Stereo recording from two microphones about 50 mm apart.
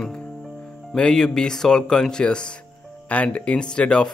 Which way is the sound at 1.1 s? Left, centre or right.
Centre.